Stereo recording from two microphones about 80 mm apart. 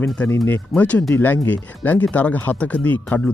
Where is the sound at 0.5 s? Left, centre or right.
Centre.